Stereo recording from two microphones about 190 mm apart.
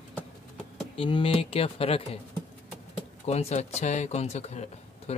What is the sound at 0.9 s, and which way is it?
Speech, 30° left (ahead or behind).